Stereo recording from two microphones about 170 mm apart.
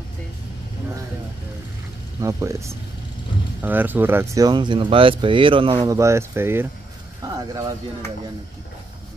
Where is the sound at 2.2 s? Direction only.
20° right (ahead or behind).